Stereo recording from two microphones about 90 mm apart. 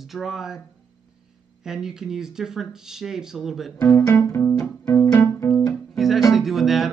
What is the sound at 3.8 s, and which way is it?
Speech, 30° left (ahead or behind).